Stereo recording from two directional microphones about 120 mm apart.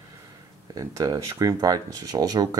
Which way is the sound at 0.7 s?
30° right (ahead or behind).